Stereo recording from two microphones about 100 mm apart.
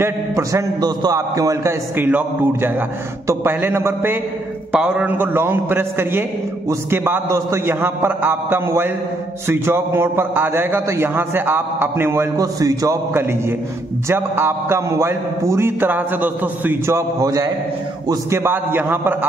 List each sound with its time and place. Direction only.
0.0 s a man's voice: 30° right (ahead or behind)
4.7 s a man's voice: 10° right (ahead or behind)
12.4 s a man's voice: 35° right (ahead or behind)